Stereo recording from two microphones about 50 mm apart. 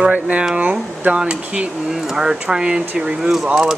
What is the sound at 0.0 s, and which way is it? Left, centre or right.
Speech, right.